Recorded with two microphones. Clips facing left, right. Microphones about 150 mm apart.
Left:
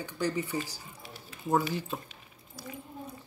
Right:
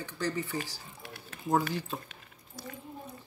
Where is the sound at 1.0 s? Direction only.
60° right (ahead or behind).